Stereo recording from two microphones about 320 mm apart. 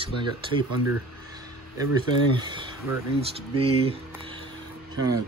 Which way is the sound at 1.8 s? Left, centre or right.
Centre.